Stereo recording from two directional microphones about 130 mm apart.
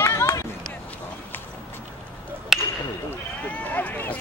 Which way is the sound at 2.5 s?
Centre (ahead or behind).